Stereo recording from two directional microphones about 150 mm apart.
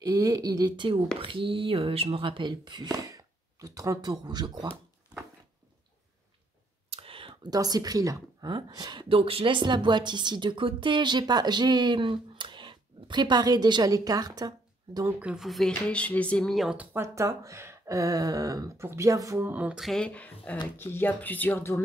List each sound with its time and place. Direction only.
0.0 s speech: 25° right (ahead or behind)
6.9 s speech: 40° right (ahead or behind)
15.1 s speech: 5° right (ahead or behind); by 21.8 s 15° left (ahead or behind)